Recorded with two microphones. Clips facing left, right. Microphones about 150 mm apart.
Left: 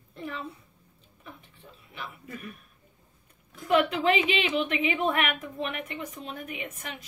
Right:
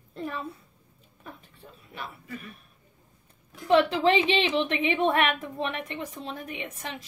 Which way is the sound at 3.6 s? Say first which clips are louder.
Right 2 dB; 30° right (ahead or behind).